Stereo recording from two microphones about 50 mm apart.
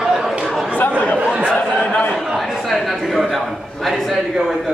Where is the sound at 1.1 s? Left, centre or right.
Centre.